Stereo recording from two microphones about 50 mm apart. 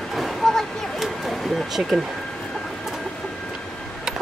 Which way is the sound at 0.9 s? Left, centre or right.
Centre.